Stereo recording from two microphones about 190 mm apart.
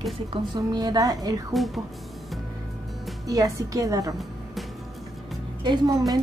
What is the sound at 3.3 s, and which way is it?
Speech, 20° right (ahead or behind).